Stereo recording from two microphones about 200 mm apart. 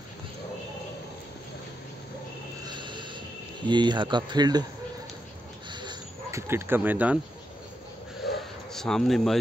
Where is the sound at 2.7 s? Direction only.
25° right (ahead or behind).